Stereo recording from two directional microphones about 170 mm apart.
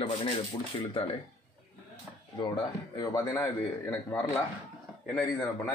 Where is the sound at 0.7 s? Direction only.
30° left (ahead or behind).